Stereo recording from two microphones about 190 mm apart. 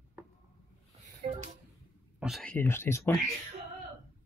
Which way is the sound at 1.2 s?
35° right (ahead or behind).